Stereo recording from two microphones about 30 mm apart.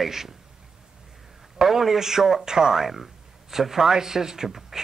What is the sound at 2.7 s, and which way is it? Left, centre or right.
Speech, centre.